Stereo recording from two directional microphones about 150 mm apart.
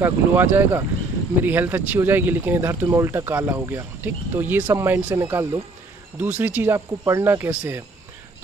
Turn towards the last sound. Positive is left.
turn(degrees=-15)  # may be behind; listen again after turning